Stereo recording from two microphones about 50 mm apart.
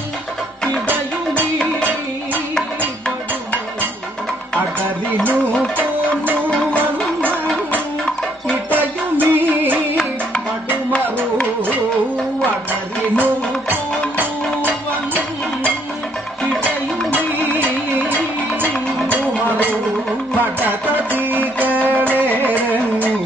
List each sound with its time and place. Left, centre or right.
5.8 s music: right
6.5 s music: left
8.6 s music: right
13.2 s music: right
17.6 s music: right
20.3 s music: right